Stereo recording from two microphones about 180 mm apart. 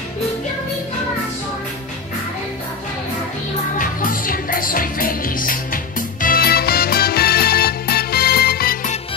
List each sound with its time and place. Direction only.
3.7 s music: 50° left (ahead or behind)